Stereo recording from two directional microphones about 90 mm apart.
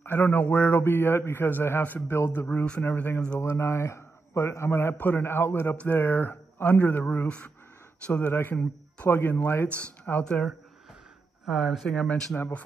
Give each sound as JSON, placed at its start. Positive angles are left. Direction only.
{"t": 0.0, "sound": "a man's voice", "side_deg": 20}
{"t": 2.4, "sound": "speech", "side_deg": 10}
{"t": 3.3, "sound": "a man's voice", "side_deg": 30}
{"t": 11.5, "sound": "speech", "side_deg": 0}